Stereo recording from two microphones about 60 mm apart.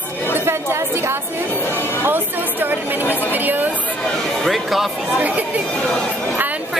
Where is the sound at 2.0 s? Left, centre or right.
Right.